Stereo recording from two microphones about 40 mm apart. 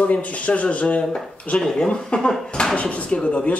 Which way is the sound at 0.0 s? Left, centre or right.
Left.